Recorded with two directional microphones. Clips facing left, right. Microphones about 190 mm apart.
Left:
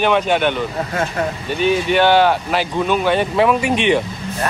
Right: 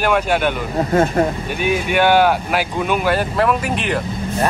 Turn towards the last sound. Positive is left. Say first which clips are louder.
# left 4 dB
turn(degrees=0)  # may be behind; listen again after turning